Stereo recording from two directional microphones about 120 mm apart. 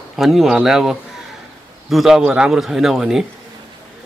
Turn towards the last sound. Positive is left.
turn(degrees=-5)  # may be behind; listen again after turning